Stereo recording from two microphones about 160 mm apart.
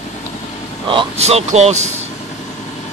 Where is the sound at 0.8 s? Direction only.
35° right (ahead or behind).